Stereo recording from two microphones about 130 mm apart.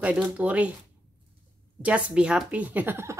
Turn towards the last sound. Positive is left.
turn(degrees=-20)  # may be behind; listen again after turning